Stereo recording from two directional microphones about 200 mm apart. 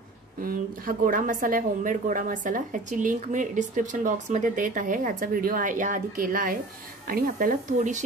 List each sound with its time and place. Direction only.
0.4 s a woman's voice: 45° right (ahead or behind)